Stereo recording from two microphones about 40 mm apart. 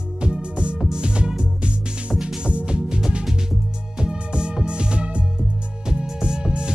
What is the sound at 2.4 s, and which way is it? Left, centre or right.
Music, right.